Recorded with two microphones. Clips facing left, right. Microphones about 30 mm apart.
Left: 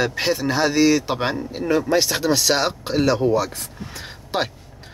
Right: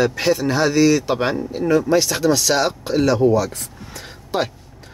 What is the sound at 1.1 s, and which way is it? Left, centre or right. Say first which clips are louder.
Speech: right 3 dB; centre.